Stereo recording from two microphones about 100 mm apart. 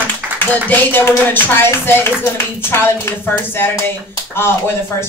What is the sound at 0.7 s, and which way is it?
Speech, 20° left (ahead or behind).